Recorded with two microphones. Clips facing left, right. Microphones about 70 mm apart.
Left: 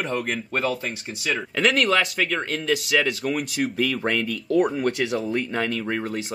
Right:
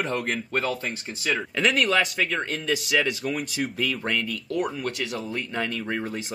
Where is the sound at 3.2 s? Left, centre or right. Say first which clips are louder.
Left 3 dB; left.